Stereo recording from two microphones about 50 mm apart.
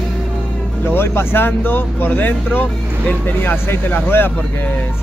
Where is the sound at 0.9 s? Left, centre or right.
Left.